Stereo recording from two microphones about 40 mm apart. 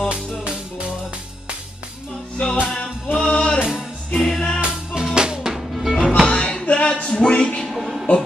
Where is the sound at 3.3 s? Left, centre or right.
Left.